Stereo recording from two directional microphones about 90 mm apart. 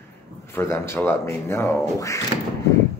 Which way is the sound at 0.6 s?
25° left (ahead or behind).